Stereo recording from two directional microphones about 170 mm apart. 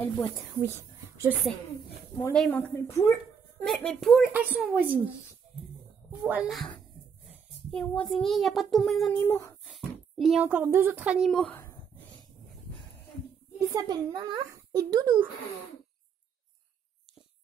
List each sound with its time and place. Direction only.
0.0 s a woman's voice: 10° left (ahead or behind)
0.6 s whispering: 15° right (ahead or behind)
2.5 s a woman's voice: 15° left (ahead or behind)
3.6 s speech: 5° left (ahead or behind)
4.3 s a woman's voice: 10° right (ahead or behind)
6.2 s a child's voice: 5° right (ahead or behind)
9.2 s a woman's voice: 15° left (ahead or behind)
9.7 s speech: centre (ahead or behind)
13.6 s a child's voice: 20° right (ahead or behind)